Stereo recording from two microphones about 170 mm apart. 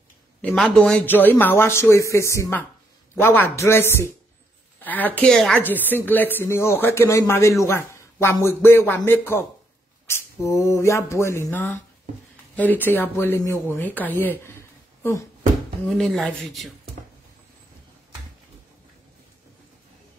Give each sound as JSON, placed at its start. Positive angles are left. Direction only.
{"t": 0.4, "sound": "a woman's voice", "side_deg": 5}
{"t": 15.9, "sound": "speech", "side_deg": 0}